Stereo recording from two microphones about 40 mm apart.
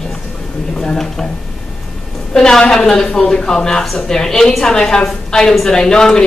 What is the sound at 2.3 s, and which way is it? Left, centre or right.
A woman's voice, centre.